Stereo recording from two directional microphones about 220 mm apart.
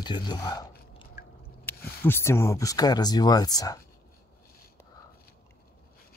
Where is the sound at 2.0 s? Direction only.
10° left (ahead or behind).